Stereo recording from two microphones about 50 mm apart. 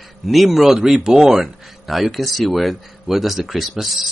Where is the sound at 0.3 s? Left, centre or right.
Centre.